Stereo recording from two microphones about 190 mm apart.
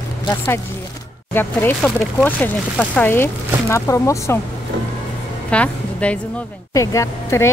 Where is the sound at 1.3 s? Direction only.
10° left (ahead or behind).